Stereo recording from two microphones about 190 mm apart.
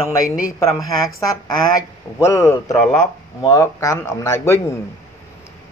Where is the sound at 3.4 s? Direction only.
20° left (ahead or behind).